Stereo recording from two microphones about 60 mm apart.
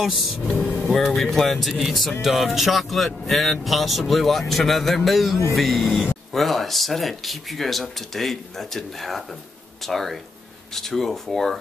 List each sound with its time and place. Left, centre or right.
0.0 s speech: centre